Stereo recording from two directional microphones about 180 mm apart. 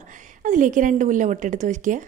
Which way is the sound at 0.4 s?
45° right (ahead or behind).